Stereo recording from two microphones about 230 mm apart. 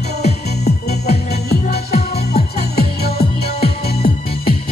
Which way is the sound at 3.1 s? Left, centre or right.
Left.